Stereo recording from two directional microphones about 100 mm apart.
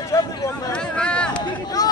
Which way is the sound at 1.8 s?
40° left (ahead or behind).